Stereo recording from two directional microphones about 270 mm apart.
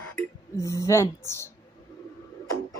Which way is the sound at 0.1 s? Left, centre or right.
Centre.